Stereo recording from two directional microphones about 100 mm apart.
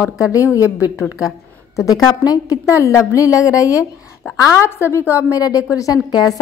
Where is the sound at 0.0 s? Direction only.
35° left (ahead or behind).